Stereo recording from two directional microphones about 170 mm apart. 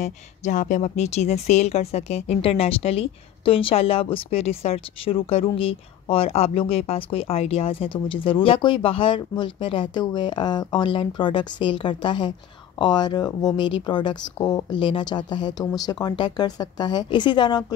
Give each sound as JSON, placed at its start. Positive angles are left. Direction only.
{"t": 0.0, "sound": "a woman's voice", "side_deg": 45}